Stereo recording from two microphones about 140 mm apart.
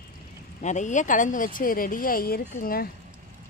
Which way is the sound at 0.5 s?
60° left (ahead or behind).